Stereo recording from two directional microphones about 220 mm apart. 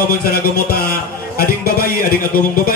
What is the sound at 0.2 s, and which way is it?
Speech, 45° left (ahead or behind).